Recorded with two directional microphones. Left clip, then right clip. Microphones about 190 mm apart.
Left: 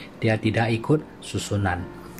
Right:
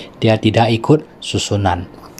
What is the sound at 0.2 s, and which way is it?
Speech, 35° right (ahead or behind).